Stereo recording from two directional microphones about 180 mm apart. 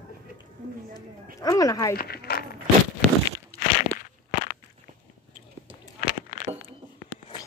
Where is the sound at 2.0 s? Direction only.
60° left (ahead or behind).